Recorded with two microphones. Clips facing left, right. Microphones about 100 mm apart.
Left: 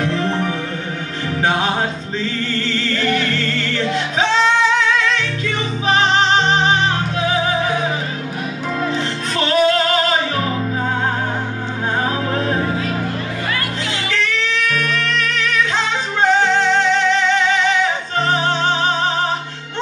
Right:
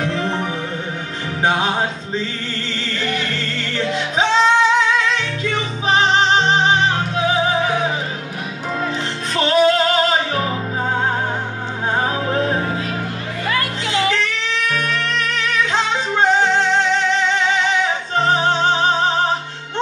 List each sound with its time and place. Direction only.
1.4 s music: 20° right (ahead or behind)
3.0 s music: 20° right (ahead or behind)
9.4 s music: 25° right (ahead or behind)
12.3 s music: 25° right (ahead or behind)
14.0 s music: 25° right (ahead or behind)
17.8 s music: 25° right (ahead or behind)